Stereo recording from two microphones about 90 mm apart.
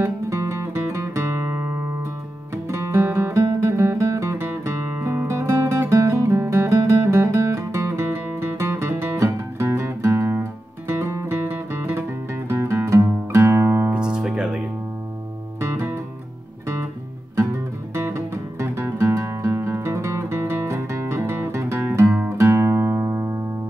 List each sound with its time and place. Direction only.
0.0 s music: 35° right (ahead or behind)
4.5 s music: 20° right (ahead or behind)
13.9 s music: 10° right (ahead or behind)
15.6 s music: 30° right (ahead or behind)
17.9 s music: 30° right (ahead or behind)